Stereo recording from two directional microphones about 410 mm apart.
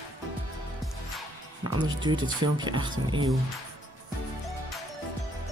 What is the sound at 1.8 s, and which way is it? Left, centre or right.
Speech, centre.